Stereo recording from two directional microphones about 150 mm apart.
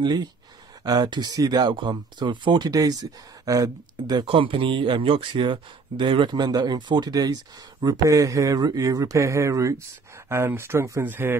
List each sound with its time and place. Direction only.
0.0 s speech: 30° right (ahead or behind)
4.1 s speech: 35° right (ahead or behind); by 11.3 s 15° right (ahead or behind)